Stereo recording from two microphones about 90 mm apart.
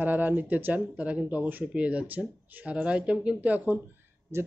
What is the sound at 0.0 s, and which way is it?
Speech, 20° right (ahead or behind).